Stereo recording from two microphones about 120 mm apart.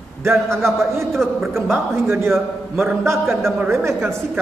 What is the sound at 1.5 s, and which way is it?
A woman's voice, 20° right (ahead or behind).